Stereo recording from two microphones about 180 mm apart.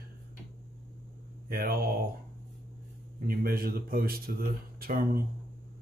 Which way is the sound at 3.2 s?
55° right (ahead or behind).